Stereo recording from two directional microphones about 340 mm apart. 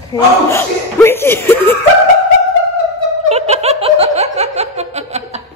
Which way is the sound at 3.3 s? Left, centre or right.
Centre.